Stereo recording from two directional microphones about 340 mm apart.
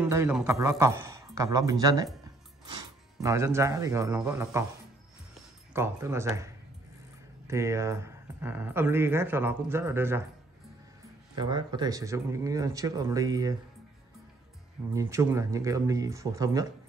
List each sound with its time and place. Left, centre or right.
0.0 s speech: centre
5.7 s speech: centre
11.3 s speech: centre
15.0 s speech: centre